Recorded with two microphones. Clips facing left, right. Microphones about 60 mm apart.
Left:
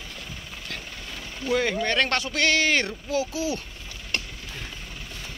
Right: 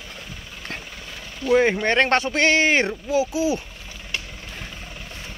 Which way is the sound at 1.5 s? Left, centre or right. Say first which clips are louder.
Right 6 dB; right.